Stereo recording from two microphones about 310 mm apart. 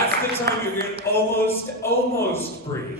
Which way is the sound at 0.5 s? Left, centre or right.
Right.